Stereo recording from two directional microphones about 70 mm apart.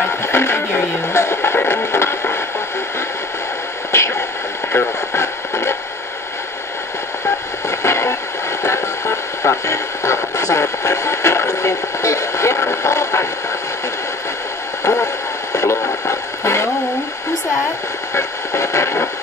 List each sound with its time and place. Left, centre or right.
0.2 s music: left
3.9 s radio: left
7.2 s radio: left
15.5 s radio: left
18.1 s a sound: left